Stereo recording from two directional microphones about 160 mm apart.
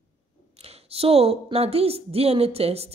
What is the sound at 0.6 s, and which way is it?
A woman's voice, 40° right (ahead or behind).